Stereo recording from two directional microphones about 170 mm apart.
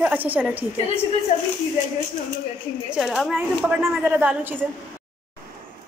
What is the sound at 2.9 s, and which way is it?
A woman's voice, 5° right (ahead or behind).